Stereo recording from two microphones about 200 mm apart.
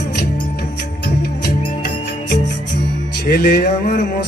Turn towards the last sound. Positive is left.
turn(degrees=55)  # may be behind; listen again after turning